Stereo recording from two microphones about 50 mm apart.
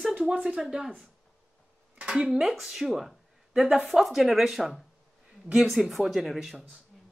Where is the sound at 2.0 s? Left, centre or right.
Centre.